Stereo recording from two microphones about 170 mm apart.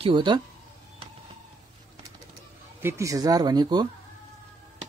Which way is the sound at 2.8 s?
15° right (ahead or behind).